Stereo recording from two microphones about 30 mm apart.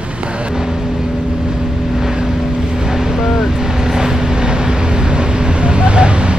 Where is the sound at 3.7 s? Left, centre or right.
Centre.